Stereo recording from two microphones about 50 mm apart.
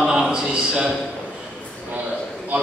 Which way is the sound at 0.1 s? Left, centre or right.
Centre.